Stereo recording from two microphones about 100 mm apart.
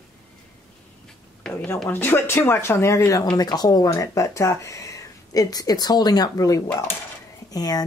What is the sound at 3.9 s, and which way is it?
A woman's voice, 30° left (ahead or behind).